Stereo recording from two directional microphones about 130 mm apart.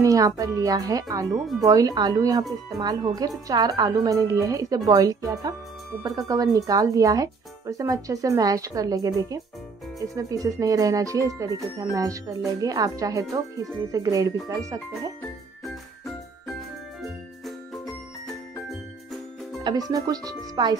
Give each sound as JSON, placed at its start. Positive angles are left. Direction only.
{"t": 0.0, "sound": "speech", "side_deg": -25}
{"t": 19.9, "sound": "speech", "side_deg": -30}